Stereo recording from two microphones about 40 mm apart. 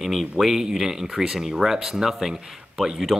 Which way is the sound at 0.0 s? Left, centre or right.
Centre.